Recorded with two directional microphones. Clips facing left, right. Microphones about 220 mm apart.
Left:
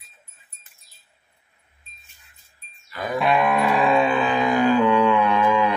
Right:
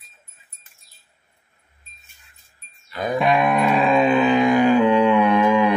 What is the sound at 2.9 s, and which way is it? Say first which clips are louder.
Music: right 2 dB; 25° right (ahead or behind).